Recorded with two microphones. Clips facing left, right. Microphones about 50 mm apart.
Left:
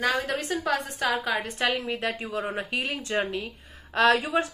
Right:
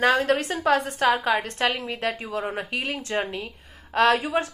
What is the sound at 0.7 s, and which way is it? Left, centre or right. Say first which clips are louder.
Speech: right 6 dB; right.